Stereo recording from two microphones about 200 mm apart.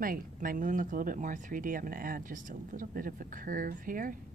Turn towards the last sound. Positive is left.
turn(degrees=-45)  # may be behind; listen again after turning